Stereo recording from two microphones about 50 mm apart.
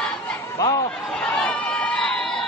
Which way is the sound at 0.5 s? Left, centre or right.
Left.